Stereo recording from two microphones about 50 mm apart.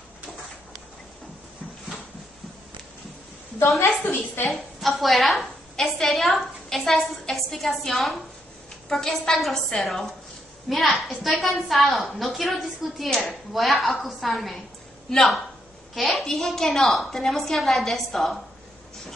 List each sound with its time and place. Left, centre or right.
4.0 s a woman's voice: left
4.5 s a woman's voice: centre